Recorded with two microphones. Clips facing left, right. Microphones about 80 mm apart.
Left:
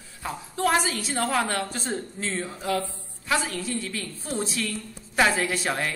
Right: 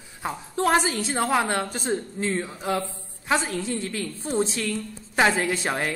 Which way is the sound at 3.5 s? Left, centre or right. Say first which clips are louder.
Right 3 dB; right.